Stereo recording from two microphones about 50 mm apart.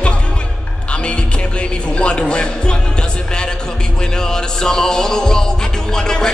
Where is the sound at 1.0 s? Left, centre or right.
Left.